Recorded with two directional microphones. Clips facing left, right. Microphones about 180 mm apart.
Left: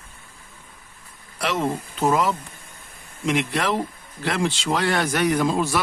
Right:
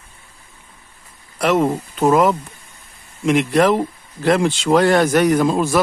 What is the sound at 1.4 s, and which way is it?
Speech, 55° right (ahead or behind).